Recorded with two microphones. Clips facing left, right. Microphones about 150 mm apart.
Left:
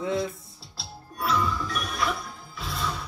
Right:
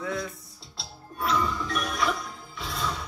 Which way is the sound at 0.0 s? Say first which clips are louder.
Left 4 dB; 25° left (ahead or behind).